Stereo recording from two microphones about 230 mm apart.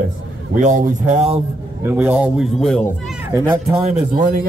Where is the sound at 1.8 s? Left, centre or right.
Centre.